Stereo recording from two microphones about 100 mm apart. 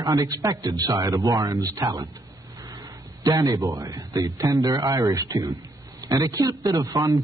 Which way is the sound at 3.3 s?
35° right (ahead or behind).